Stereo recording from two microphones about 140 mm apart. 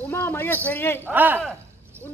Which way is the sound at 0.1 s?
15° left (ahead or behind).